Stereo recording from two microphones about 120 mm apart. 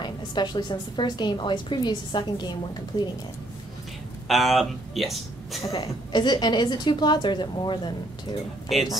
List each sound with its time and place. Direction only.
0.0 s a woman's voice: 40° left (ahead or behind)
4.3 s speech: centre (ahead or behind)
5.7 s a woman's voice: 35° left (ahead or behind)